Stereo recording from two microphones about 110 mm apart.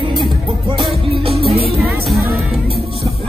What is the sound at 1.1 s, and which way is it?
Music, 60° right (ahead or behind).